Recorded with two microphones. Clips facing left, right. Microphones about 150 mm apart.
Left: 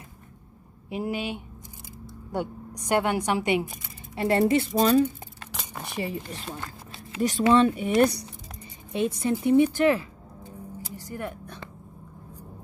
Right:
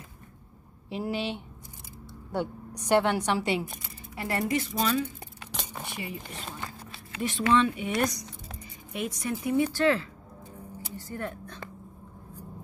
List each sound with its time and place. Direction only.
0.8 s a woman's voice: 15° left (ahead or behind)
2.9 s a woman's voice: 10° left (ahead or behind); by 4.6 s 30° left (ahead or behind)
4.7 s a woman's voice: 40° left (ahead or behind); by 10.0 s 15° left (ahead or behind)
11.0 s a sound: 15° left (ahead or behind)